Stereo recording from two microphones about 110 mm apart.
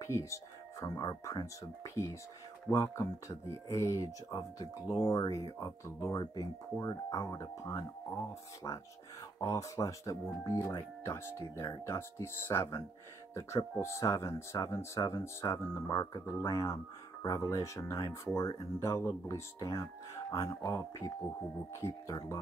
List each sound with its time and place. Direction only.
0.0 s speech: 25° left (ahead or behind)
2.7 s speech: 25° left (ahead or behind)